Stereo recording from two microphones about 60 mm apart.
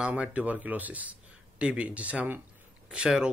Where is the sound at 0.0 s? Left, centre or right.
Right.